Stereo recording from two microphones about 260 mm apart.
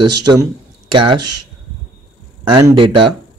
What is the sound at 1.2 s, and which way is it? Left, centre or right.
Speech, right.